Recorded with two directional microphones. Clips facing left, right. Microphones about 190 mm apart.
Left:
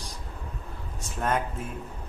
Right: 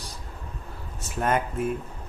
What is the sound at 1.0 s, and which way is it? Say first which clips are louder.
Speech: right 3 dB; 5° right (ahead or behind).